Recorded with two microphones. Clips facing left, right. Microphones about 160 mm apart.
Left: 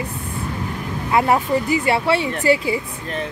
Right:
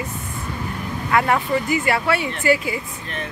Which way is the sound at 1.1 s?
30° left (ahead or behind).